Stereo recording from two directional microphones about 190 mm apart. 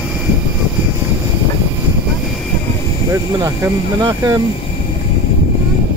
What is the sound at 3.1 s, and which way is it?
Speech, 15° right (ahead or behind).